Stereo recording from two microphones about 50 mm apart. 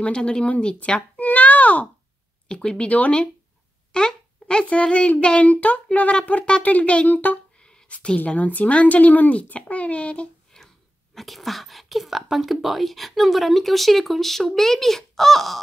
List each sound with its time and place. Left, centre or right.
0.0 s a child's voice: centre
0.7 s babbling: left
2.4 s a child's voice: centre; by 7.3 s left
7.9 s a child's voice: left
8.3 s a child's voice: left
11.1 s speech: centre